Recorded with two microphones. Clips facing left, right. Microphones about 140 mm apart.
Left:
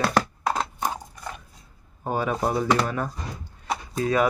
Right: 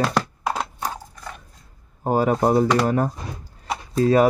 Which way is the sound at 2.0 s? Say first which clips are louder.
Right 6 dB; 35° right (ahead or behind).